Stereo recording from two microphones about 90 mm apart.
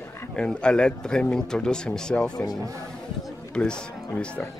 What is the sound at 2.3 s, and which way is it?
Speech, 45° left (ahead or behind).